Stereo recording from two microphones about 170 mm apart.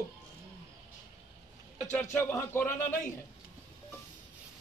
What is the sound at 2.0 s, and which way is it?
Speech, 15° left (ahead or behind).